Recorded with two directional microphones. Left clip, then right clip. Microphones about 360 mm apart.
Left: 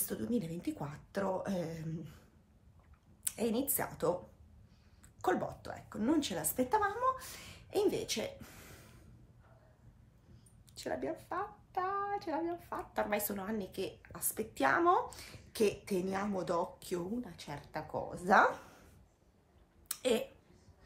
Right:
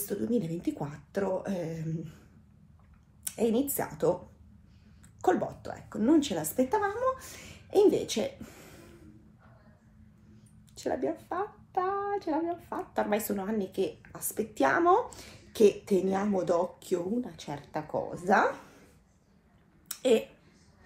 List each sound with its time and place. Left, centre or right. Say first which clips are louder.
0.0 s speech: right 7 dB; centre
3.3 s speech: right 7 dB; centre
5.2 s speech: right 6 dB; centre
10.7 s speech: right 7 dB; centre
20.0 s speech: right 8 dB; centre